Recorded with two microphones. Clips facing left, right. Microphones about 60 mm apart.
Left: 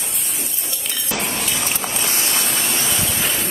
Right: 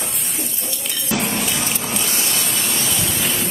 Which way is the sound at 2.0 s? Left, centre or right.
Left.